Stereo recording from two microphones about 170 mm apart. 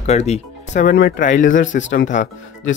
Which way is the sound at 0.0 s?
40° left (ahead or behind).